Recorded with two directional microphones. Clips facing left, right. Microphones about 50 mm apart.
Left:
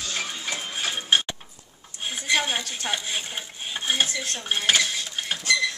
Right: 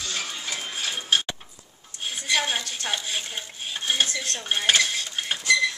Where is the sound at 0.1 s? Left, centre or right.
Centre.